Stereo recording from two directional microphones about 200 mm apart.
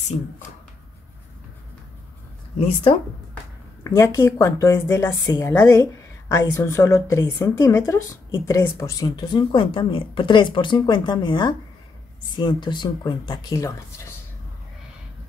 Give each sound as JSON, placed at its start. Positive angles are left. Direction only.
{"t": 2.9, "sound": "speech", "side_deg": 25}
{"t": 3.8, "sound": "speech", "side_deg": 15}